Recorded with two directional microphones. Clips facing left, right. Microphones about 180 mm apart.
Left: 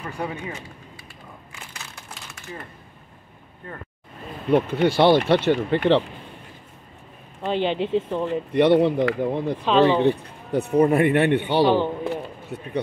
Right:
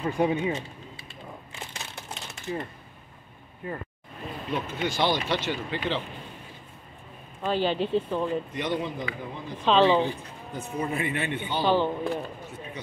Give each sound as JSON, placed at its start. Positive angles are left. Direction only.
{"t": 0.0, "sound": "speech", "side_deg": -20}
{"t": 1.5, "sound": "a sound", "side_deg": -25}
{"t": 4.5, "sound": "speech", "side_deg": 60}
{"t": 7.4, "sound": "speech", "side_deg": 20}
{"t": 8.3, "sound": "speech", "side_deg": 70}
{"t": 11.6, "sound": "speech", "side_deg": 15}
{"t": 12.5, "sound": "speech", "side_deg": 65}